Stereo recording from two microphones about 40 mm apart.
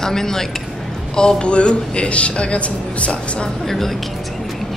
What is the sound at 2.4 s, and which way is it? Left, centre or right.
A woman's voice, left.